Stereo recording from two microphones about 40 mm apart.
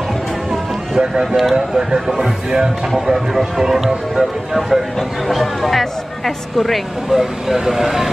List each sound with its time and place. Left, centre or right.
0.5 s music: centre
1.2 s speech: centre
1.7 s speech: centre
7.1 s speech: centre